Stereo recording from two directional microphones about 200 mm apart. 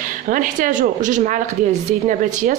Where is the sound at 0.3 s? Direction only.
40° right (ahead or behind).